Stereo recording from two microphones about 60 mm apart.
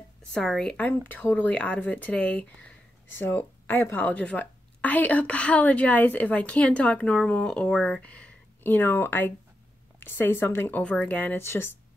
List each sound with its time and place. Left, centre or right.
0.3 s a woman's voice: centre
0.7 s a woman's voice: left
3.2 s speech: left
4.1 s a woman's voice: left
10.8 s a woman's voice: left